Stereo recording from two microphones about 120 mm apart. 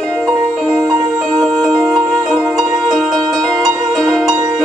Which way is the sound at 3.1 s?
30° right (ahead or behind).